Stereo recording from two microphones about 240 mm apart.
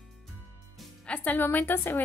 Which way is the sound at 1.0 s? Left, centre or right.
Centre.